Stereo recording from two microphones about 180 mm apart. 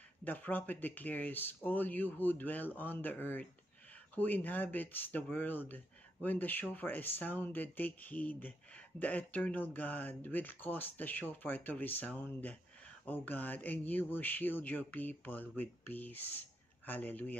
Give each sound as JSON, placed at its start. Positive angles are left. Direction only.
{"t": 0.2, "sound": "speech", "side_deg": 10}